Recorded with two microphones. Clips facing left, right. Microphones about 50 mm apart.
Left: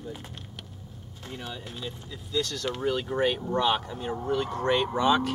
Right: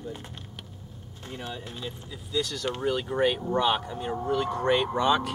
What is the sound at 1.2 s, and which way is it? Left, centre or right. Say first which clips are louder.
Speech: right 1 dB; centre.